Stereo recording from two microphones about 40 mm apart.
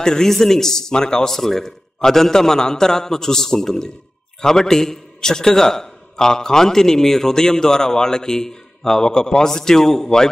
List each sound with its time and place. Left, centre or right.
0.0 s a man's voice: centre